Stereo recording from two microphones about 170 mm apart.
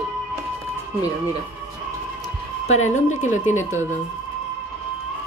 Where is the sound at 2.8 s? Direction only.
45° left (ahead or behind).